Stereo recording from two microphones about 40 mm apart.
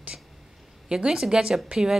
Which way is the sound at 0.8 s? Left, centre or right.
Centre.